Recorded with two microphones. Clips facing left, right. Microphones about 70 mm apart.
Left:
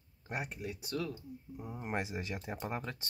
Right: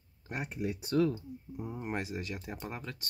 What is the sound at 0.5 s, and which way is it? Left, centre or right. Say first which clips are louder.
Speech: right 7 dB; centre.